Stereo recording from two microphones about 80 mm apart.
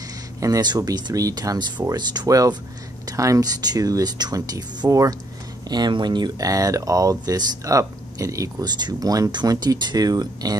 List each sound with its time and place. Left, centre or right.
0.6 s speech: right
1.9 s speech: right
2.2 s speech: right
5.7 s speech: right
6.4 s speech: right
8.6 s speech: right